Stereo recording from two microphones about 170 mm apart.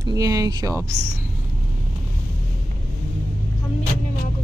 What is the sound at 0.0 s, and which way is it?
Speech, 20° right (ahead or behind).